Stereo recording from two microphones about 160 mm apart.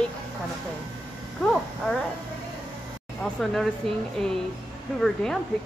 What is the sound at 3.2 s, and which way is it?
Speech, centre (ahead or behind).